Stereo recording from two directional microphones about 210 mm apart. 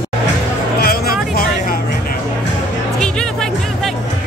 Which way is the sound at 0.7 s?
45° left (ahead or behind).